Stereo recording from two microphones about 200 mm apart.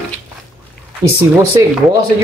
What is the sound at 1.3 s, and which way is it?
Speech, 10° right (ahead or behind).